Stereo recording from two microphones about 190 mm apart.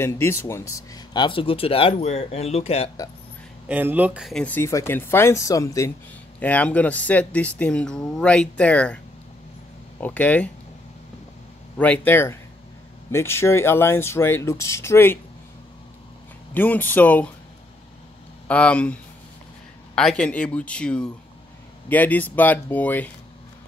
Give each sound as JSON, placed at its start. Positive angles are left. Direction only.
{"t": 0.0, "sound": "speech", "side_deg": 15}
{"t": 3.6, "sound": "speech", "side_deg": -10}
{"t": 11.8, "sound": "speech", "side_deg": 10}
{"t": 16.5, "sound": "speech", "side_deg": 10}
{"t": 18.5, "sound": "speech", "side_deg": 5}
{"t": 20.0, "sound": "speech", "side_deg": 5}